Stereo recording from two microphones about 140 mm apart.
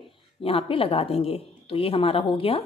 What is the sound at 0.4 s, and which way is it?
A woman's voice, 40° left (ahead or behind).